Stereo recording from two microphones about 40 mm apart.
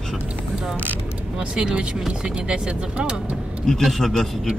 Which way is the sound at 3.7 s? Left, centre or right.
Centre.